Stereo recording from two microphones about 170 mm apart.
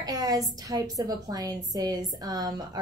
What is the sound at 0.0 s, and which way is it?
A woman's voice, 20° right (ahead or behind).